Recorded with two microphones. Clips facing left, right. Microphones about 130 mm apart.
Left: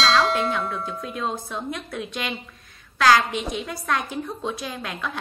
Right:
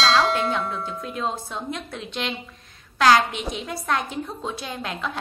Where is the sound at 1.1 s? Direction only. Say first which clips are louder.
Right 1 dB; 25° right (ahead or behind).